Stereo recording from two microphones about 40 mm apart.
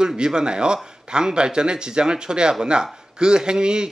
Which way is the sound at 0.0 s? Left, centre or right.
Centre.